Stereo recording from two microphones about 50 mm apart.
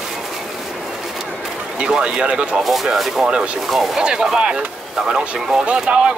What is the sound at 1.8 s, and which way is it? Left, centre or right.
Speech, centre.